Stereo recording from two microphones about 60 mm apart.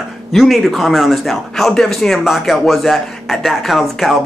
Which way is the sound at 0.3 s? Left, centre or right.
Centre.